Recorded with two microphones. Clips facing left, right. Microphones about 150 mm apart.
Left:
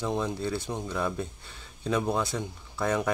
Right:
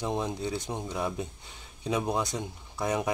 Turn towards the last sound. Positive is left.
turn(degrees=-15)  # may be behind; listen again after turning